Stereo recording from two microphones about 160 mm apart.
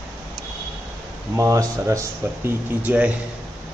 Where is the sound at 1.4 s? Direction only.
20° right (ahead or behind).